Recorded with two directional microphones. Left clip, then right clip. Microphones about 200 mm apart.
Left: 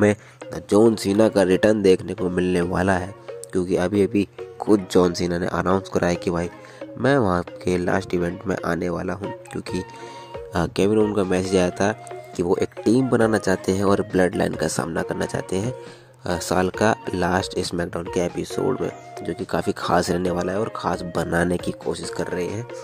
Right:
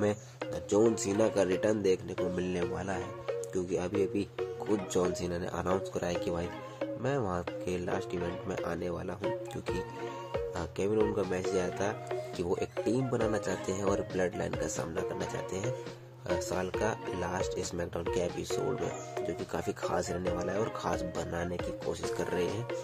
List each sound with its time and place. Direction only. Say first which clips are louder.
0.0 s speech: left 12 dB; 40° left (ahead or behind)
10.5 s speech: left 14 dB; 50° left (ahead or behind)
19.2 s speech: left 13 dB; 40° left (ahead or behind)
22.1 s speech: left 7 dB; 30° left (ahead or behind)